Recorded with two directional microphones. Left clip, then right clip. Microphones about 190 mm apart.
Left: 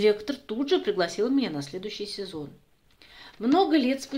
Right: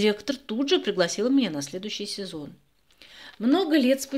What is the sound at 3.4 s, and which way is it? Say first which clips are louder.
Speech: even; 45° right (ahead or behind).